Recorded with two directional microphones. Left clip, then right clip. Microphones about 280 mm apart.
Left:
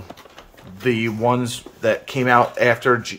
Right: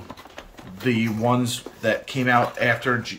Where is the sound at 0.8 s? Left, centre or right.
Centre.